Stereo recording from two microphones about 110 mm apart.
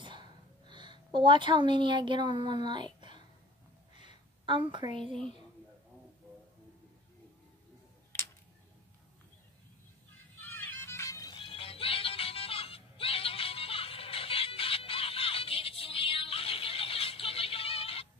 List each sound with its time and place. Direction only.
0.0 s a sound: 45° right (ahead or behind)
4.5 s a woman's voice: 50° right (ahead or behind)
10.1 s music: 20° left (ahead or behind)
11.3 s music: 55° left (ahead or behind)